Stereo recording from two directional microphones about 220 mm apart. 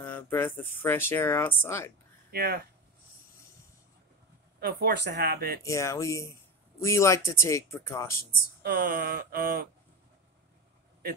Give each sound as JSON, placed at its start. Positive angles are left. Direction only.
{"t": 0.0, "sound": "speech", "side_deg": 10}
{"t": 2.3, "sound": "speech", "side_deg": -50}
{"t": 4.6, "sound": "speech", "side_deg": -45}
{"t": 5.6, "sound": "speech", "side_deg": 15}
{"t": 8.6, "sound": "speech", "side_deg": -40}